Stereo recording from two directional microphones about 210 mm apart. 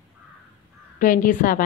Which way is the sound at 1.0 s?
40° left (ahead or behind).